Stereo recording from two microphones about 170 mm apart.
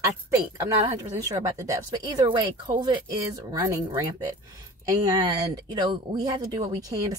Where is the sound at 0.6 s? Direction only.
20° right (ahead or behind).